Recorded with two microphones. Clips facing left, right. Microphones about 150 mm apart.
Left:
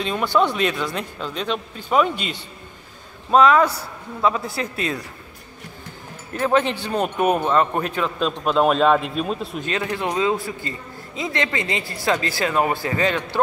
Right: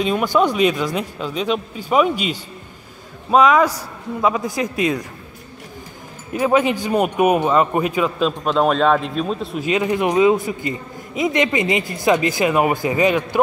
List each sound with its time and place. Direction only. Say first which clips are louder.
0.0 s speech: right 3 dB; 10° right (ahead or behind)
6.3 s speech: right 3 dB; 10° right (ahead or behind)
9.7 s speech: right 7 dB; 15° right (ahead or behind)